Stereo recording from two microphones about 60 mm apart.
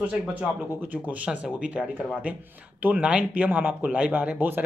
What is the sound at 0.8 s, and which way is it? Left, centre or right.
Speech, right.